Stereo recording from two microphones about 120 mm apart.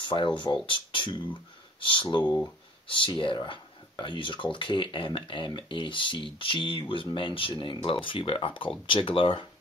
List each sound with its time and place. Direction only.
0.0 s speech: 45° left (ahead or behind)